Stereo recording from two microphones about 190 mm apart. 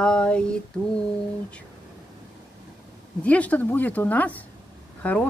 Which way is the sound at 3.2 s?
5° left (ahead or behind).